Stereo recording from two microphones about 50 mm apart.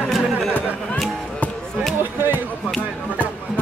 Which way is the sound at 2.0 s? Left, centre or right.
Right.